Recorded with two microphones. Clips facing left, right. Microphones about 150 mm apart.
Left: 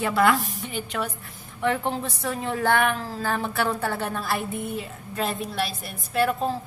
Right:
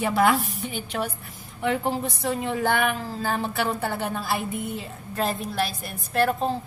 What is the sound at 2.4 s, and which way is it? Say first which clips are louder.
Child singing: left 2 dB; 10° right (ahead or behind).